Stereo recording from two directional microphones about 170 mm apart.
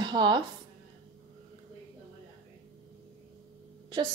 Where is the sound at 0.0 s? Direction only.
25° right (ahead or behind).